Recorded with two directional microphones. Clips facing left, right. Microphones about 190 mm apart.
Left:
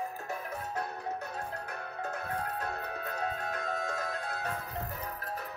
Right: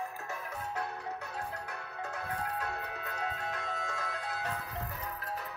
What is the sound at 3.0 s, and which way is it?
Music, 40° left (ahead or behind).